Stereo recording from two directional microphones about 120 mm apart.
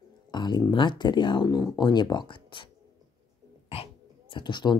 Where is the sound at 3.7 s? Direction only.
50° left (ahead or behind).